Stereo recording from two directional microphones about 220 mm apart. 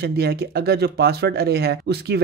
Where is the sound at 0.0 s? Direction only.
45° right (ahead or behind).